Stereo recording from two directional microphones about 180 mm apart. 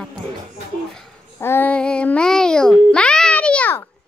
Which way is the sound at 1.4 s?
10° left (ahead or behind).